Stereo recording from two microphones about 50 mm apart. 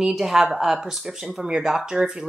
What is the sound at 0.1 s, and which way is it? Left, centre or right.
Speech, centre.